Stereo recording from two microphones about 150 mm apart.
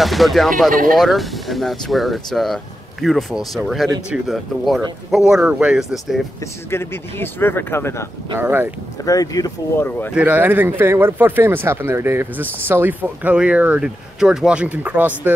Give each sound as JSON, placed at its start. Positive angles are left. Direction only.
{"t": 0.0, "sound": "speech", "side_deg": 0}
{"t": 0.7, "sound": "speech", "side_deg": -65}
{"t": 0.9, "sound": "speech", "side_deg": 0}
{"t": 6.4, "sound": "speech", "side_deg": 15}
{"t": 8.4, "sound": "speech", "side_deg": -15}
{"t": 9.0, "sound": "speech", "side_deg": 25}
{"t": 9.8, "sound": "speech", "side_deg": 15}
{"t": 10.1, "sound": "speech", "side_deg": -10}